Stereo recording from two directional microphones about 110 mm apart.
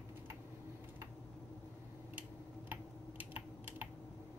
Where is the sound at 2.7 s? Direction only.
15° right (ahead or behind).